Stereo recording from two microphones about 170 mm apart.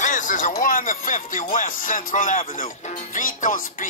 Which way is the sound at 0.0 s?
50° left (ahead or behind).